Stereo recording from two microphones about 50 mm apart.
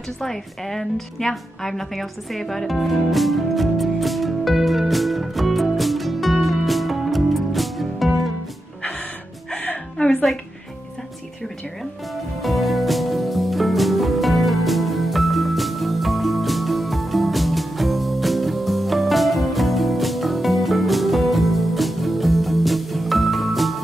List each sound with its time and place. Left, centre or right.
0.2 s music: centre
9.6 s music: left
12.4 s music: centre